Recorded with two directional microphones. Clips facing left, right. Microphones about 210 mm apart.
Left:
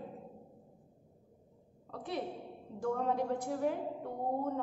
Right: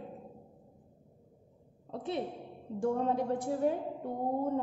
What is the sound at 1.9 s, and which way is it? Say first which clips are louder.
A woman's voice: right 3 dB; 25° right (ahead or behind).